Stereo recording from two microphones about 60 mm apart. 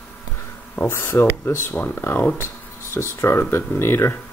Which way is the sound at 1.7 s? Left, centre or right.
Left.